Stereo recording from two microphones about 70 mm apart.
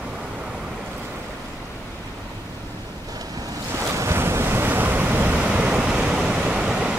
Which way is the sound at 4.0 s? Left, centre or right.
Right.